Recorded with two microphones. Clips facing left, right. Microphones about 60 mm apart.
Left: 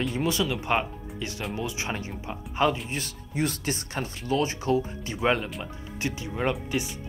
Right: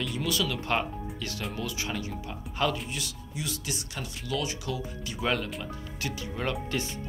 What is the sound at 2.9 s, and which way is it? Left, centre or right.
Speech, left.